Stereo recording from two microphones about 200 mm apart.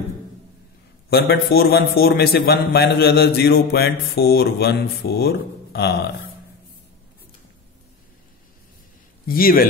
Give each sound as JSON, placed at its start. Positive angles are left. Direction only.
{"t": 1.1, "sound": "a man's voice", "side_deg": 50}
{"t": 9.3, "sound": "a man's voice", "side_deg": 45}